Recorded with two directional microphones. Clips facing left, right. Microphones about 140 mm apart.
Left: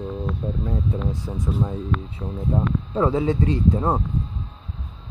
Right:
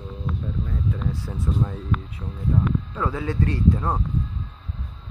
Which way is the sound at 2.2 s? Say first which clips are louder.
Left 1 dB; 25° left (ahead or behind).